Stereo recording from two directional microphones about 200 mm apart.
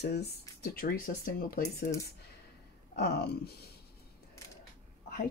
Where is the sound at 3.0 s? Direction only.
55° left (ahead or behind).